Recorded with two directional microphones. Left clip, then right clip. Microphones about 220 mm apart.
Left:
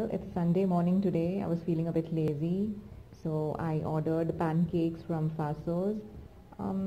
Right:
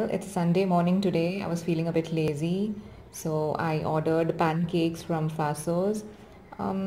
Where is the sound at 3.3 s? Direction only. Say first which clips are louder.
Right 5 dB; 25° right (ahead or behind).